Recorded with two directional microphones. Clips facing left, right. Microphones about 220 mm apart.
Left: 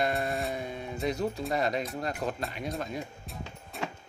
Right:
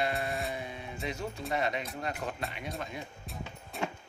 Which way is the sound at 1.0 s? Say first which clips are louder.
Left 7 dB; 40° left (ahead or behind).